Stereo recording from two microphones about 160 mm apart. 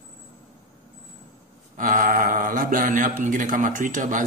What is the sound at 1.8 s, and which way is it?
A man's voice, 55° right (ahead or behind).